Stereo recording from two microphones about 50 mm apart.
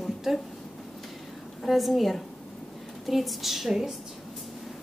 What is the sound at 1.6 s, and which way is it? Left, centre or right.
A woman's voice, centre.